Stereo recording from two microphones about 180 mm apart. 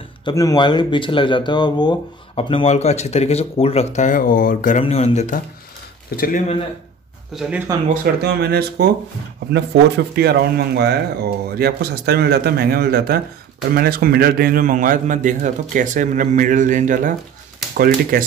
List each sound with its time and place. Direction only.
0.2 s speech: 20° left (ahead or behind); by 5.4 s 40° left (ahead or behind)
6.1 s speech: 50° left (ahead or behind)
7.3 s speech: 5° right (ahead or behind)
8.0 s a man's voice: 60° right (ahead or behind)